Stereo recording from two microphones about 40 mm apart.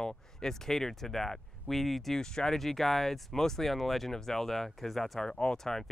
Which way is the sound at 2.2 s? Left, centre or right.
Centre.